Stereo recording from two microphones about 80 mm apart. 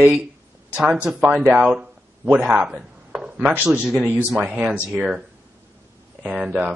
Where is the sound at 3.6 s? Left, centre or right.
Centre.